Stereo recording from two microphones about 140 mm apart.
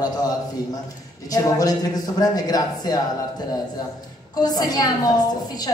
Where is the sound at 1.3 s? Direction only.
25° left (ahead or behind).